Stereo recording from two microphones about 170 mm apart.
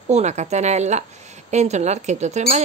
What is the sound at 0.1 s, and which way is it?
Speech, 40° right (ahead or behind).